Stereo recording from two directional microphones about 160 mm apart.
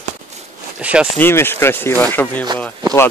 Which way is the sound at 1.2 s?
15° left (ahead or behind).